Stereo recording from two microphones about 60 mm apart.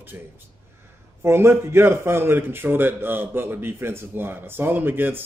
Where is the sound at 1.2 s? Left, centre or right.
Right.